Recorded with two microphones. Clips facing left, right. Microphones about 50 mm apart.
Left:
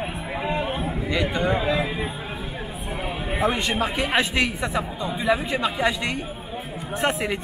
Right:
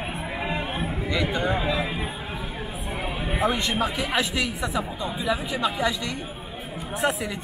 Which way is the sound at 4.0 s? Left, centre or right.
Left.